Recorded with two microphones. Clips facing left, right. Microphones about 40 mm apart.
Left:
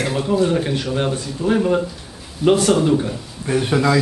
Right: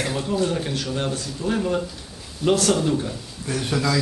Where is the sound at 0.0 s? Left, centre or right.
Centre.